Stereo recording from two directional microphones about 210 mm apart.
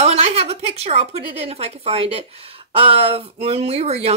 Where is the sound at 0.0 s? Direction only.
30° right (ahead or behind).